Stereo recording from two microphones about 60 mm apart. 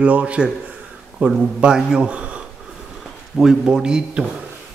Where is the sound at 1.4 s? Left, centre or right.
Centre.